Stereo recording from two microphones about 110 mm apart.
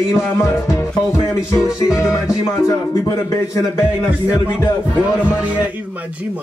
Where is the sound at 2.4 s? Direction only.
30° left (ahead or behind).